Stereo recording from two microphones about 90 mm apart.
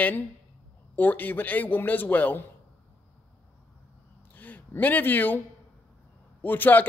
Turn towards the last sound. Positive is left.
turn(degrees=20)  # may be behind; listen again after turning